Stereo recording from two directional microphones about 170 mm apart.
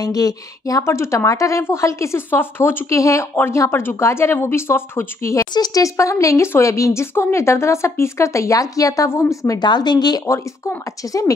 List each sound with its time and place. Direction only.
0.0 s a woman's voice: 20° left (ahead or behind)